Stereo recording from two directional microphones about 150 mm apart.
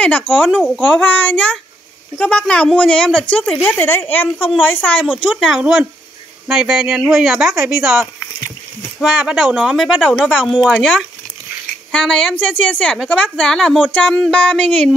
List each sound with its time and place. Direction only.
0.0 s a woman's voice: 10° left (ahead or behind)
0.4 s a woman's voice: 5° right (ahead or behind)
1.0 s a woman's voice: 10° left (ahead or behind)
5.0 s a woman's voice: 5° right (ahead or behind)
9.0 s a woman's voice: 5° right (ahead or behind)